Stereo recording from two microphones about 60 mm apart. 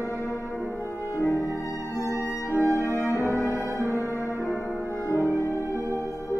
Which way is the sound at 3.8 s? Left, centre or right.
Left.